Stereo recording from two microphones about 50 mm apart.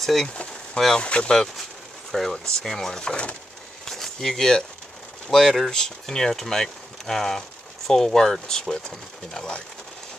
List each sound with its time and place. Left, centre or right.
0.0 s speech: centre
1.0 s speech: left
1.3 s speech: centre
3.8 s a sound: centre
5.3 s speech: centre